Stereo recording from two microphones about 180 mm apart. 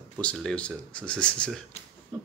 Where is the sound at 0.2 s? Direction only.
5° left (ahead or behind).